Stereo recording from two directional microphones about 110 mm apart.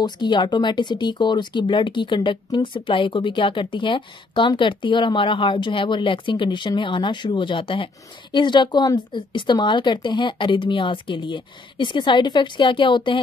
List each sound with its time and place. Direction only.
0.0 s speech: 45° left (ahead or behind)